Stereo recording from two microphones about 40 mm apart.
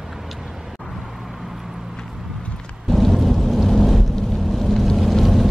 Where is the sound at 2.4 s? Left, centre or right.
Left.